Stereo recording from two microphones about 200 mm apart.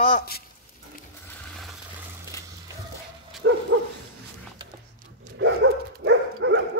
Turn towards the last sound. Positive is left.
turn(degrees=-65)  # may be behind; listen again after turning